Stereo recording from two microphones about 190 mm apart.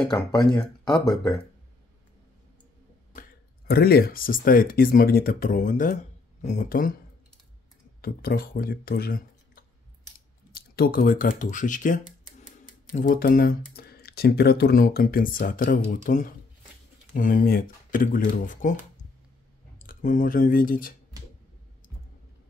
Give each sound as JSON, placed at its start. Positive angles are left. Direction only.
{"t": 1.1, "sound": "speech", "side_deg": 15}
{"t": 3.2, "sound": "speech", "side_deg": 55}
{"t": 8.0, "sound": "speech", "side_deg": 50}
{"t": 19.9, "sound": "speech", "side_deg": 45}